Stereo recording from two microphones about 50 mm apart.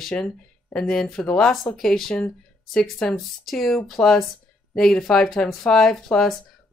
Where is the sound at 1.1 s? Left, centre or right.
Left.